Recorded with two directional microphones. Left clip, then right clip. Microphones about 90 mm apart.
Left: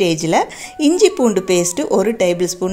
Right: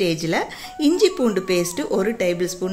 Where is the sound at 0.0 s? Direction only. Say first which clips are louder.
Left 6 dB; 55° left (ahead or behind).